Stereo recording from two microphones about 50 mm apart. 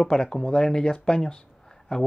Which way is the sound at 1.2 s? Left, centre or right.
Centre.